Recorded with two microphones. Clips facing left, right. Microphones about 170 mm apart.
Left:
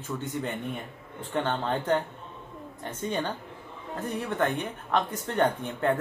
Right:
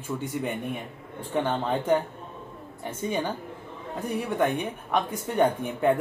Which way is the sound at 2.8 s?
10° right (ahead or behind).